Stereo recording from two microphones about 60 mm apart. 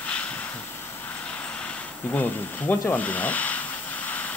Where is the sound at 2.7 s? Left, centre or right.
Left.